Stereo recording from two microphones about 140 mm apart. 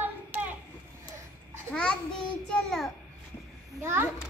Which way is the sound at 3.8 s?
15° right (ahead or behind).